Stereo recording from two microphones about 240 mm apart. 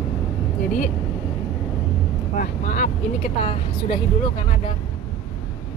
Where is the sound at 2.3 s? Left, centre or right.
Left.